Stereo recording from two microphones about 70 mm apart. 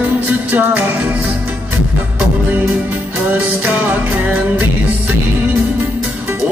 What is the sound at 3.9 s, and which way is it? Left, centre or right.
Music, right.